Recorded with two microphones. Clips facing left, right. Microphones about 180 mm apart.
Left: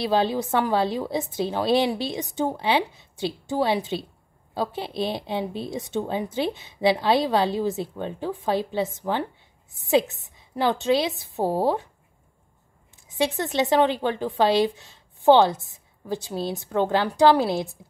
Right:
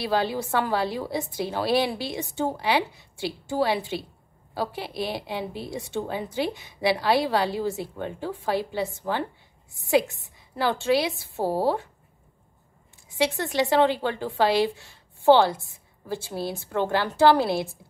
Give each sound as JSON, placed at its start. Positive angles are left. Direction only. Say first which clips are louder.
{"t": 0.0, "sound": "speech", "louder": "left 3 dB", "side_deg": 20}
{"t": 13.1, "sound": "speech", "louder": "left 1 dB", "side_deg": 20}